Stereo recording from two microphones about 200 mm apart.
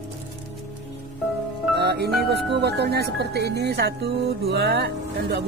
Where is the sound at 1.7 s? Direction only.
55° right (ahead or behind).